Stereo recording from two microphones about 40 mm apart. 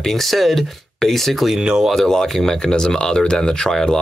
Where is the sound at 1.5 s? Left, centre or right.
Centre.